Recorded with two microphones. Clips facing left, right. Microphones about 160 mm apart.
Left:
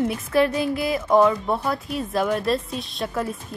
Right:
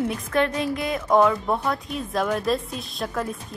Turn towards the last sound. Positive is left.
turn(degrees=0)  # may be behind; listen again after turning